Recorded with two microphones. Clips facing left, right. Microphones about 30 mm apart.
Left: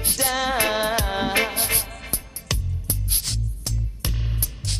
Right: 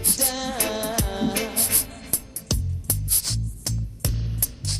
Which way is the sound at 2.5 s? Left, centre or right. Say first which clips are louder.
Even; centre.